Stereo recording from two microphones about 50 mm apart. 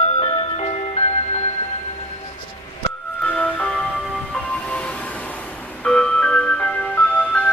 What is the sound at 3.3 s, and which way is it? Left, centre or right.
Music, left.